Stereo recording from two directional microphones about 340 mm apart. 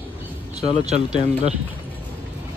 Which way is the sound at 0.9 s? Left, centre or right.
Centre.